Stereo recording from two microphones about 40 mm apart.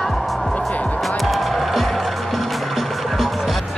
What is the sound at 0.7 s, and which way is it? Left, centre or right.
Music, left.